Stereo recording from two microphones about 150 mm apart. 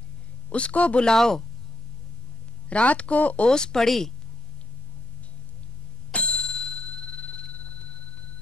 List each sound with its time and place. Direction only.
0.5 s speech: 10° left (ahead or behind)
2.7 s speech: 10° left (ahead or behind)
6.1 s bicycle bell: 5° left (ahead or behind)